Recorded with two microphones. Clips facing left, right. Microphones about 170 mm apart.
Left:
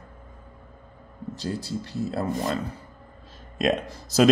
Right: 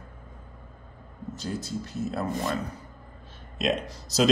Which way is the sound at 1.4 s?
30° left (ahead or behind).